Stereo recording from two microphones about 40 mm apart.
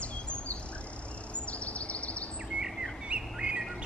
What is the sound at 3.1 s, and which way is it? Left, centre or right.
Bird, right.